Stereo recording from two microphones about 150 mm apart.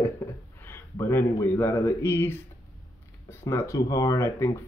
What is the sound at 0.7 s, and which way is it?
Speech, 15° left (ahead or behind).